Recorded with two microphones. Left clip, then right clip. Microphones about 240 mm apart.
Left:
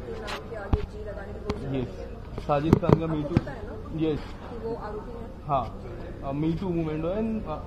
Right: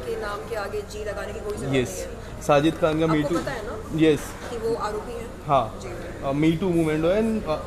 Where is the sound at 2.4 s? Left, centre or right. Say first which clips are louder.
Right 4 dB; right.